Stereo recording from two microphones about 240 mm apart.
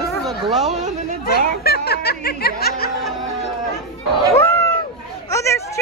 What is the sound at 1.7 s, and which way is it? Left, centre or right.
Music, left.